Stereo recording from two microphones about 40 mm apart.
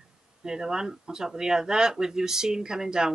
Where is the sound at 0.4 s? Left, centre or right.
Centre.